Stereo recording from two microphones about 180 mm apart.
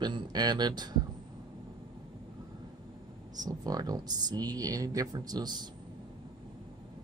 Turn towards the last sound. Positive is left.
turn(degrees=-20)  # may be behind; listen again after turning